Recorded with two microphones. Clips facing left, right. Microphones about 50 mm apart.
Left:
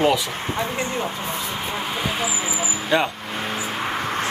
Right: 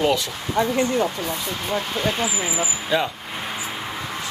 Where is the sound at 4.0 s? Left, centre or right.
Left.